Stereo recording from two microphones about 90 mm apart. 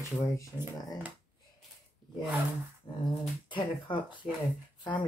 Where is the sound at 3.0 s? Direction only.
60° left (ahead or behind).